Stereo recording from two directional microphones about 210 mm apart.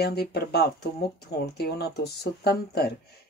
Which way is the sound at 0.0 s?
50° left (ahead or behind).